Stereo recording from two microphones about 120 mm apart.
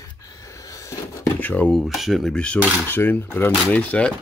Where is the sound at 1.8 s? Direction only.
Centre (ahead or behind).